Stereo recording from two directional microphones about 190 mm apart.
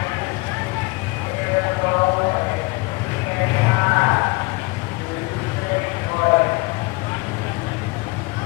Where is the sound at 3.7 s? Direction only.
20° left (ahead or behind).